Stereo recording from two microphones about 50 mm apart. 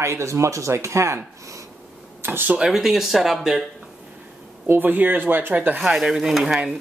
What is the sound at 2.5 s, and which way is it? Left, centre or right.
Speech, centre.